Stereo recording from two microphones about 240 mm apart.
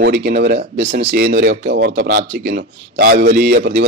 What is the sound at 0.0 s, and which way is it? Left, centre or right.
A man's voice, right.